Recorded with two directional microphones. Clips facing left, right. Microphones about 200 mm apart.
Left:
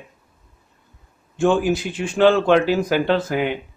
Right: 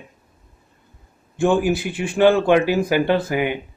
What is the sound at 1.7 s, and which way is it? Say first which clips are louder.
Speech: even; 60° right (ahead or behind).